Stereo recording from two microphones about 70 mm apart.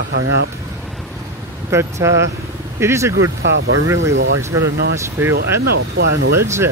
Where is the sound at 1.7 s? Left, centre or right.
Right.